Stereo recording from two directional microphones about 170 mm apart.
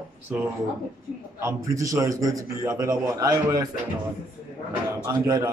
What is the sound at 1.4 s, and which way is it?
A man's voice, 20° right (ahead or behind).